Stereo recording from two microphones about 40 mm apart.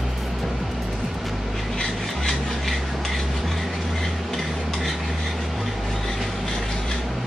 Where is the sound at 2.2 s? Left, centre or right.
Centre.